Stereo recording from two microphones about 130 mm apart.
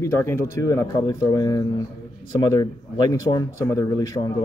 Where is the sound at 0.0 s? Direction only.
20° left (ahead or behind).